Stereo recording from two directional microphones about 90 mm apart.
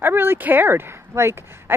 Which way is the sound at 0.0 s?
25° right (ahead or behind).